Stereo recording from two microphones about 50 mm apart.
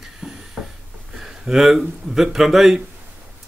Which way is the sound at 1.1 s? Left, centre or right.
Centre.